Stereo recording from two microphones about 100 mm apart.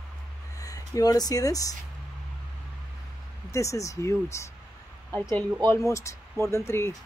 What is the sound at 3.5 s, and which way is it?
Speech, 30° left (ahead or behind).